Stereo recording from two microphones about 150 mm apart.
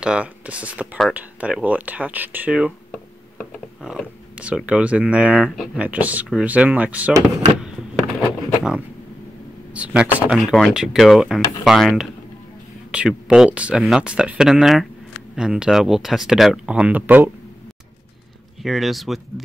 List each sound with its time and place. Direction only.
0.0 s speech: 5° right (ahead or behind)
3.8 s speech: 5° right (ahead or behind)
7.6 s a sound: 5° left (ahead or behind)
9.8 s speech: 10° right (ahead or behind)
18.6 s speech: centre (ahead or behind)